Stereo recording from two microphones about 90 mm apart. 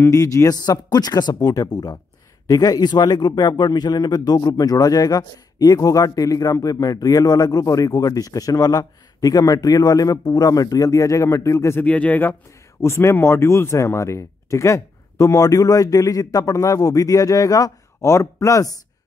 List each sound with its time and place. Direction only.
0.0 s a man's voice: 35° left (ahead or behind)
11.8 s speech: 15° left (ahead or behind)
12.8 s speech: 30° left (ahead or behind)